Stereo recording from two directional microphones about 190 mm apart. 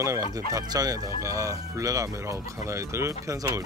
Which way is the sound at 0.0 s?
15° right (ahead or behind).